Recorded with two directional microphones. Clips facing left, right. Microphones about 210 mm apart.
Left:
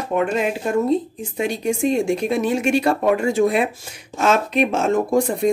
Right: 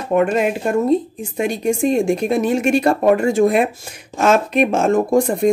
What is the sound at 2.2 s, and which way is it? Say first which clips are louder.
Speech: right 3 dB; 45° right (ahead or behind).